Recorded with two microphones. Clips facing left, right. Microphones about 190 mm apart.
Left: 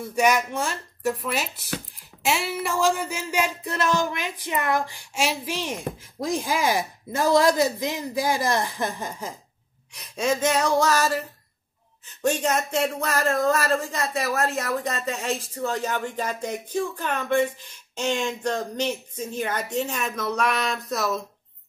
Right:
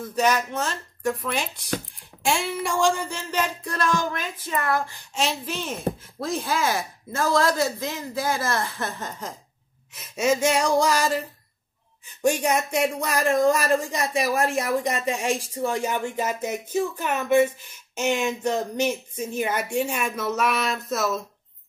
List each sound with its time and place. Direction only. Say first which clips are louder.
0.0 s speech: left 1 dB; 10° left (ahead or behind)
2.2 s music: right 1 dB; 5° left (ahead or behind)
4.0 s speech: left 1 dB; 15° left (ahead or behind)
9.9 s speech: right 2 dB; 5° right (ahead or behind)
12.2 s speech: right 1 dB; 10° right (ahead or behind)